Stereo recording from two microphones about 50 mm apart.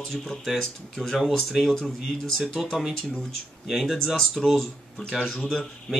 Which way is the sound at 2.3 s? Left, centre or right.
Centre.